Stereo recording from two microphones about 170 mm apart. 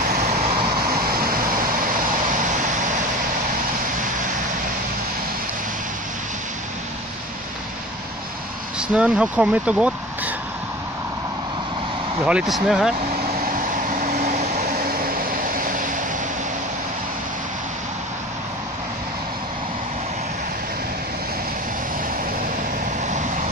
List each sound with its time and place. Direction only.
0.3 s vehicle: 40° right (ahead or behind)
0.8 s vehicle: 60° right (ahead or behind)
8.7 s speech: 5° right (ahead or behind)
12.3 s speech: 5° right (ahead or behind)
14.0 s vehicle: 50° right (ahead or behind)